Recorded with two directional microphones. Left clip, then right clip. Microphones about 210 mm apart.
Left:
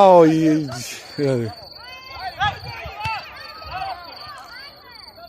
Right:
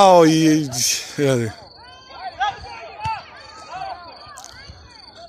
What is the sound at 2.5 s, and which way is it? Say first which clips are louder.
Basketball bounce: left 2 dB; 35° right (ahead or behind).